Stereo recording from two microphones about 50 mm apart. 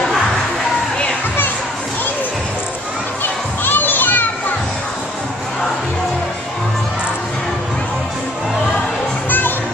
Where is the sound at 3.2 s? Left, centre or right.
Left.